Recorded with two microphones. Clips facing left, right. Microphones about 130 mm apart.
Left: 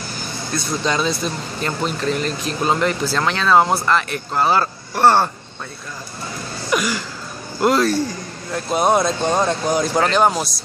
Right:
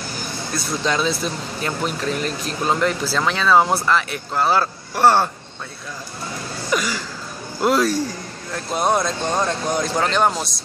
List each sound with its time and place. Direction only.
0.6 s speech: centre (ahead or behind)
6.7 s a sound: 5° left (ahead or behind)
7.6 s speech: 5° right (ahead or behind)